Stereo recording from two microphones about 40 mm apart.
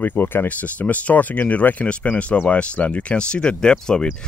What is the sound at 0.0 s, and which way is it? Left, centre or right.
Speech, left.